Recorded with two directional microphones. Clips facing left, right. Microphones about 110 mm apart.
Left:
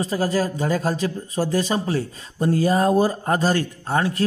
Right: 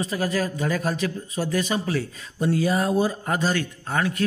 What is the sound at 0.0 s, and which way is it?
A man's voice, 35° left (ahead or behind).